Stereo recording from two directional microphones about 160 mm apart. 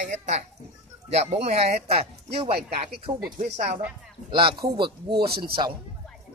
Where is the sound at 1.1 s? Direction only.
40° right (ahead or behind).